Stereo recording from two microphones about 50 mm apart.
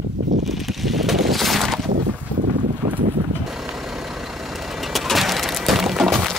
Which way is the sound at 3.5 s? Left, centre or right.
Centre.